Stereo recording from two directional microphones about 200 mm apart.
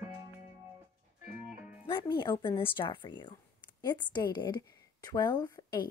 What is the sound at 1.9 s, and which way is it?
A woman's voice, 20° left (ahead or behind).